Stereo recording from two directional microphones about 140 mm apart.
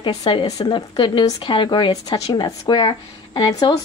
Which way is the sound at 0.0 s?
35° left (ahead or behind).